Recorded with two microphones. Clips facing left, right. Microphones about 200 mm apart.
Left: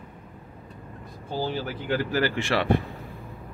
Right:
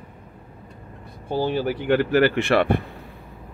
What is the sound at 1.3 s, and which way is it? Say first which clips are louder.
A man's voice: right 6 dB; 60° right (ahead or behind).